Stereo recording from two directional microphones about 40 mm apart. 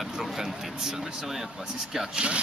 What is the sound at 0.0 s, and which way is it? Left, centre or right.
Speech, centre.